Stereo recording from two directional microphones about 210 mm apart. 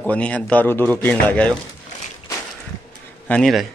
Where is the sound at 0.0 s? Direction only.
5° left (ahead or behind).